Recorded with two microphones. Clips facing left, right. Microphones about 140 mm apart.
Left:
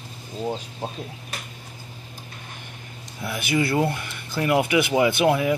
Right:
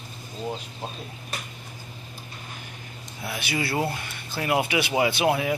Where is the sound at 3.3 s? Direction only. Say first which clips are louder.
Left 5 dB; 50° left (ahead or behind).